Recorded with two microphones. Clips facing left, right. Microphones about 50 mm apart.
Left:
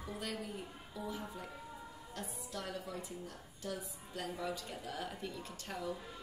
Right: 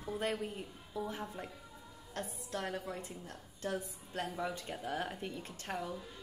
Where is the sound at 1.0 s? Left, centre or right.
Right.